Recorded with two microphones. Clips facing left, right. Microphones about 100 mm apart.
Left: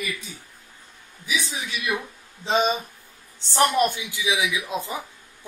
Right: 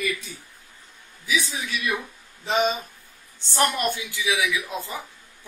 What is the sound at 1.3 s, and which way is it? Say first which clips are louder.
Speech: right 2 dB; 15° left (ahead or behind).